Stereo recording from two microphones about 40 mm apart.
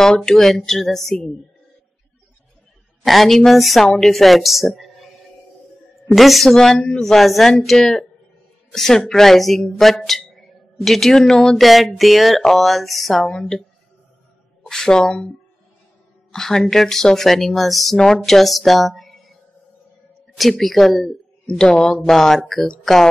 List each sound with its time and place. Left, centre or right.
0.0 s speech: centre
0.5 s speech: centre
3.1 s a woman's voice: centre
6.5 s speech: centre
14.7 s speech: centre
16.3 s a woman's voice: centre